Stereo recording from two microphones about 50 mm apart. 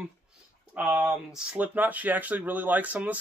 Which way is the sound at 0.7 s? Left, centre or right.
Right.